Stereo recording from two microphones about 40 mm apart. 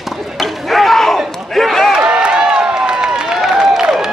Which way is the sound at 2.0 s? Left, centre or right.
Right.